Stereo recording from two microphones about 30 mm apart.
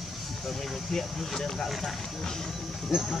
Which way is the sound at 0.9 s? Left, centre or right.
Centre.